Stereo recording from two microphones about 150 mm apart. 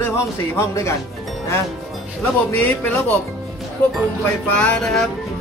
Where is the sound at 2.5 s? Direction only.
10° left (ahead or behind).